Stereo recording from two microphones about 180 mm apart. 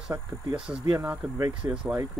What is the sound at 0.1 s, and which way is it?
Speech, 15° right (ahead or behind).